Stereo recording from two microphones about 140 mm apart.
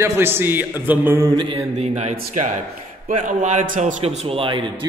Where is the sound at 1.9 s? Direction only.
55° right (ahead or behind).